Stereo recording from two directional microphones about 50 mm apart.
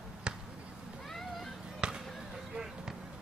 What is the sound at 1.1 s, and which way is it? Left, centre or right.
Vehicle, centre.